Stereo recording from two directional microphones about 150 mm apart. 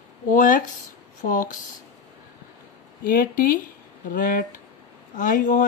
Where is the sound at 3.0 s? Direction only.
65° left (ahead or behind).